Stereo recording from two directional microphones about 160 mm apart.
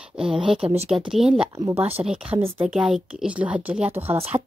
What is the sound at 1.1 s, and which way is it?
A woman's voice, 5° right (ahead or behind).